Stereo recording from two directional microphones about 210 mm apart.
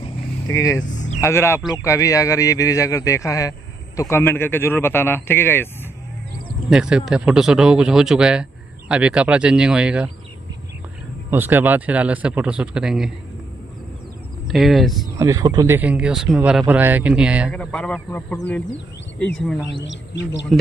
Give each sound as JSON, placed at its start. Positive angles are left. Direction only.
{"t": 0.5, "sound": "speech", "side_deg": 15}
{"t": 6.7, "sound": "speech", "side_deg": -5}
{"t": 11.2, "sound": "speech", "side_deg": -10}
{"t": 14.5, "sound": "speech", "side_deg": 0}
{"t": 15.1, "sound": "speech", "side_deg": -15}
{"t": 19.8, "sound": "speech", "side_deg": 60}